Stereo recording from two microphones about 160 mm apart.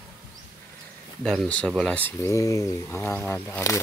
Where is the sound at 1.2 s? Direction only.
5° left (ahead or behind).